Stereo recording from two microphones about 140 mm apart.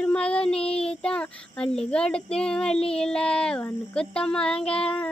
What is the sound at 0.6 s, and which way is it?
Speech, 45° left (ahead or behind).